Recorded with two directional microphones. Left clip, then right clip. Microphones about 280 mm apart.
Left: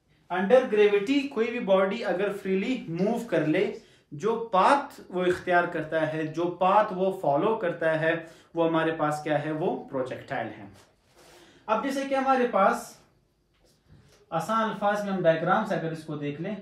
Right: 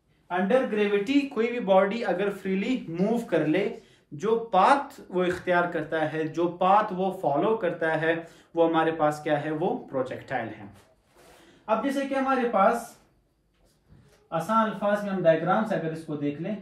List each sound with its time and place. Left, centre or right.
0.3 s speech: centre
11.6 s speech: centre
14.3 s speech: centre